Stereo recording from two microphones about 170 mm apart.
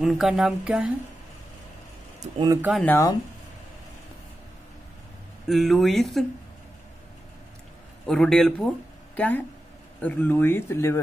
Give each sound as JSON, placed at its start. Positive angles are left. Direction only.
{"t": 0.0, "sound": "speech", "side_deg": 0}
{"t": 2.3, "sound": "speech", "side_deg": -25}
{"t": 2.8, "sound": "speech", "side_deg": 10}
{"t": 5.5, "sound": "speech", "side_deg": 0}
{"t": 8.1, "sound": "speech", "side_deg": 5}